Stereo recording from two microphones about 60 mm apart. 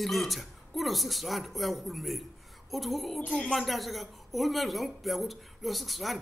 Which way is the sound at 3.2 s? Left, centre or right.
Centre.